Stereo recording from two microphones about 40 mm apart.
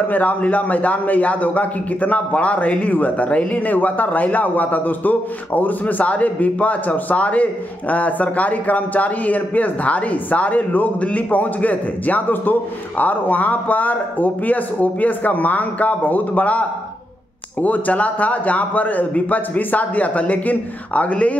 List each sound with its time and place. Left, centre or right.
0.1 s a man's voice: left